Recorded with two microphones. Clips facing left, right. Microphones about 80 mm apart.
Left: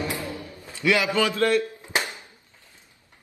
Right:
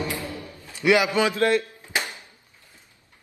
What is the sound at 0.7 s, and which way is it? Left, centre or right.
Speech, right.